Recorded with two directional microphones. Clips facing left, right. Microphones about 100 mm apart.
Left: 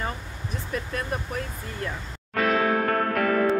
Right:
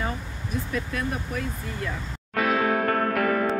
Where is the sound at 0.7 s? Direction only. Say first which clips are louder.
Left 1 dB; 35° left (ahead or behind).